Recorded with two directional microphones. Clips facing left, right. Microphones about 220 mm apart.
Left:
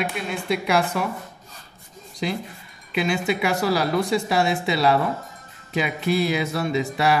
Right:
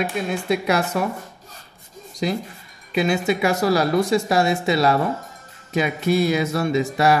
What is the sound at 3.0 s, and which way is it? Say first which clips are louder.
Speech: right 3 dB; 40° right (ahead or behind).